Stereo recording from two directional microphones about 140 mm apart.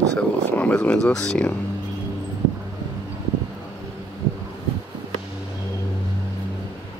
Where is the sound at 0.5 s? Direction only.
10° left (ahead or behind).